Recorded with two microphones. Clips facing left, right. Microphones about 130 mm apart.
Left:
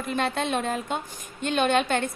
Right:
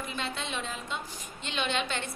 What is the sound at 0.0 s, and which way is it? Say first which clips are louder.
A woman's voice: left 9 dB; 55° left (ahead or behind).